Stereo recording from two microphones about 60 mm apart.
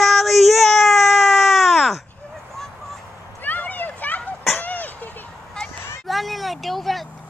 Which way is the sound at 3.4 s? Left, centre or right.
Left.